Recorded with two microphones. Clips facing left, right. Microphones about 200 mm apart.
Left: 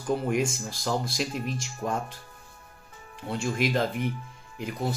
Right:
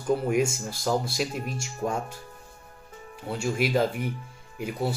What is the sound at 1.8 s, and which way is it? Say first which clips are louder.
Speech: right 2 dB; 35° right (ahead or behind).